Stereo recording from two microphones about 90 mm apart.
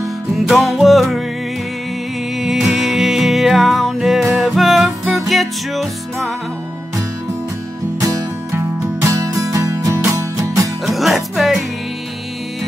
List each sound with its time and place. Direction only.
0.0 s music: centre (ahead or behind)
2.3 s music: 5° right (ahead or behind)
8.0 s music: 35° right (ahead or behind)
10.9 s music: centre (ahead or behind)